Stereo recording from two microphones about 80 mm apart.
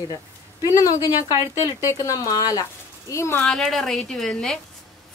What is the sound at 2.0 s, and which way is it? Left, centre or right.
Speech, left.